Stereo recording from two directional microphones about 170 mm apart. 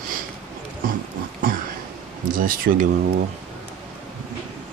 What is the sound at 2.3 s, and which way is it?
Speech, 55° right (ahead or behind).